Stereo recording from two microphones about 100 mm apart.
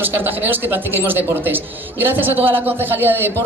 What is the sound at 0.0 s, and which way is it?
A man's voice, 20° right (ahead or behind).